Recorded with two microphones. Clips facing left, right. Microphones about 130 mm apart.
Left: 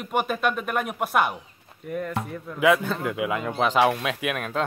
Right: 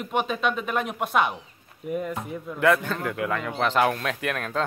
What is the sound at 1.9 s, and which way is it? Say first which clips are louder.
Speech: even; 10° right (ahead or behind).